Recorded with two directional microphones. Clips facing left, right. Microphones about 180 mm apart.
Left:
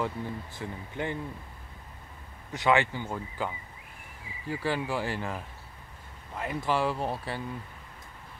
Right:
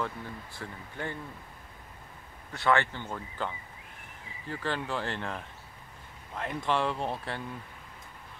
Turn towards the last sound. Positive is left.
turn(degrees=5)  # may be behind; listen again after turning